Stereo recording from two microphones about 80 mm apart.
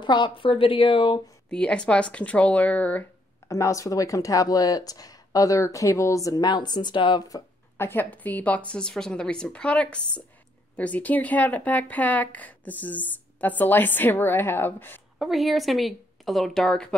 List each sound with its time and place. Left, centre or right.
0.0 s a woman's voice: left
0.4 s speech: left
1.5 s a woman's voice: centre
3.4 s speech: left
7.7 s a woman's voice: left
15.1 s a woman's voice: centre